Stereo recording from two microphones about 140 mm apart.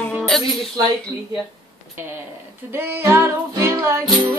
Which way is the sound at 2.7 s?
15° right (ahead or behind).